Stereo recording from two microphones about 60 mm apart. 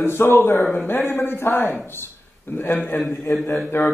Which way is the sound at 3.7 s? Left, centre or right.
Left.